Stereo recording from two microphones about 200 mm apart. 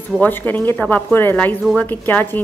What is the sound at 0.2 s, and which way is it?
A woman's voice, 10° left (ahead or behind).